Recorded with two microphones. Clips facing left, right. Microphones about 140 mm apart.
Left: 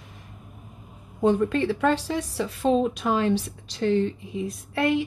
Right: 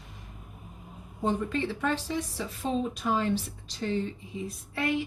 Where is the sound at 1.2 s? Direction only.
70° left (ahead or behind).